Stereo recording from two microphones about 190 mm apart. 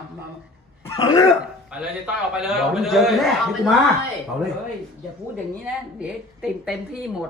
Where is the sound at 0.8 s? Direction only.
20° left (ahead or behind).